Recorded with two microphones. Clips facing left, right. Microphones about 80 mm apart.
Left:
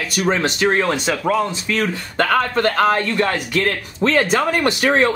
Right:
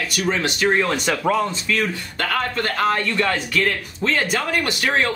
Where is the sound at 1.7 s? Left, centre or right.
Left.